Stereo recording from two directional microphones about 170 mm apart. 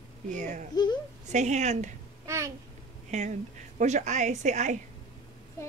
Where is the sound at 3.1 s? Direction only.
45° right (ahead or behind).